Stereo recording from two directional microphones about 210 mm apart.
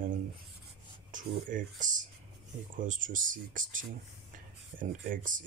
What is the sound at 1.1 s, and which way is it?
Speech, 40° right (ahead or behind).